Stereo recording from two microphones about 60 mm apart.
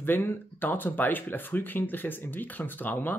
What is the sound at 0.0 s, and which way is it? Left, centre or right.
Speech, left.